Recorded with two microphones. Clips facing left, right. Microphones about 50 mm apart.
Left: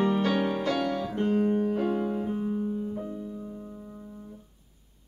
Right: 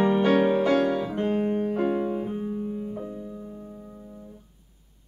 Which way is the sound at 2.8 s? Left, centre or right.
Centre.